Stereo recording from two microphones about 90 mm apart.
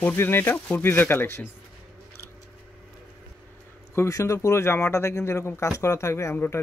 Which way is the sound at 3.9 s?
35° left (ahead or behind).